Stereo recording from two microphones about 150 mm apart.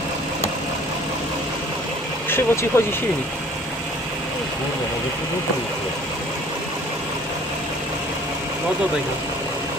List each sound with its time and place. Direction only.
2.2 s speech: 15° left (ahead or behind)